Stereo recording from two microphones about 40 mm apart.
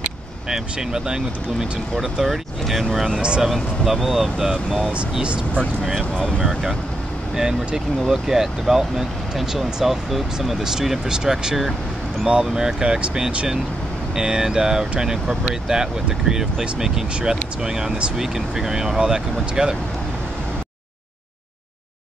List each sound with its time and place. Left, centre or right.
0.5 s speech: centre
3.2 s speech: right
3.8 s speech: centre
7.3 s speech: centre
14.1 s speech: centre